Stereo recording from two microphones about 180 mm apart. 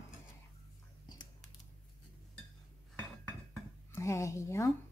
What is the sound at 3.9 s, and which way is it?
Speech, 15° left (ahead or behind).